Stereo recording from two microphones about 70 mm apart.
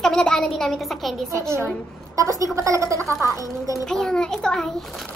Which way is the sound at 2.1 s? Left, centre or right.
Right.